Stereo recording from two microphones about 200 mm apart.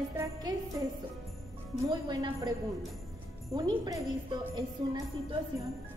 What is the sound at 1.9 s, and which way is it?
Speech, 20° right (ahead or behind).